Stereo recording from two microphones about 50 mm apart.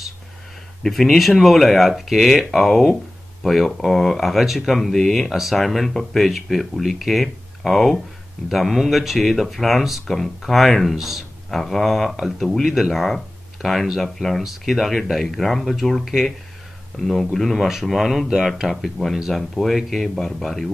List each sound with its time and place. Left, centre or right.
1.0 s speech: centre